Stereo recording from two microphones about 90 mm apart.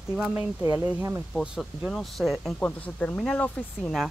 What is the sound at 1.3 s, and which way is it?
Speech, 5° right (ahead or behind).